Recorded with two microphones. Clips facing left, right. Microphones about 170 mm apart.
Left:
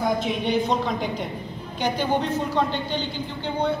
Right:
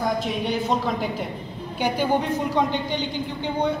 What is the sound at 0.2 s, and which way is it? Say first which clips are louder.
A woman's voice: left 2 dB; centre (ahead or behind).